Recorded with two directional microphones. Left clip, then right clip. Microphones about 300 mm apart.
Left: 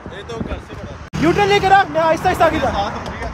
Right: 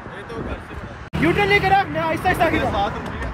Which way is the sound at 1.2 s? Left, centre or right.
Centre.